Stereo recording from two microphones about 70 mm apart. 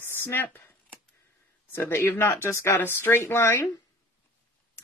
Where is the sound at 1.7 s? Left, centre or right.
Left.